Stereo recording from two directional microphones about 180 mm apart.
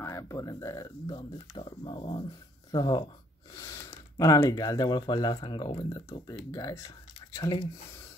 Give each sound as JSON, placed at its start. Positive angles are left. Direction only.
{"t": 0.0, "sound": "speech", "side_deg": 15}